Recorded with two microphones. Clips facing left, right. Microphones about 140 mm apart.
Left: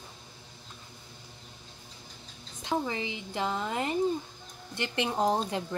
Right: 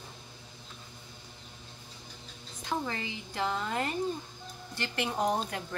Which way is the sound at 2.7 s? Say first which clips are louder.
Left 3 dB; 20° left (ahead or behind).